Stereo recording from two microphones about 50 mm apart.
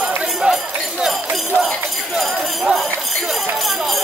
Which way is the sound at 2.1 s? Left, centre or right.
Centre.